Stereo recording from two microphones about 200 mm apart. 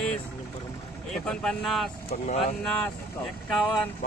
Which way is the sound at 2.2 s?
35° left (ahead or behind).